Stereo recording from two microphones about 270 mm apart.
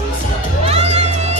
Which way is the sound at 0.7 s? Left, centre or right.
Right.